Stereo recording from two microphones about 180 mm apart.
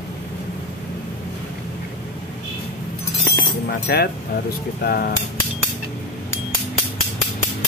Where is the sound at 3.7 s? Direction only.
65° left (ahead or behind).